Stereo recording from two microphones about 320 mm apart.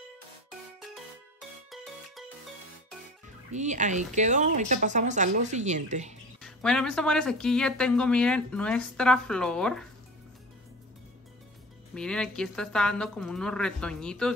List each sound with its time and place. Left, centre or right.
1.7 s music: centre
3.5 s speech: right
6.4 s a woman's voice: centre
11.9 s a woman's voice: centre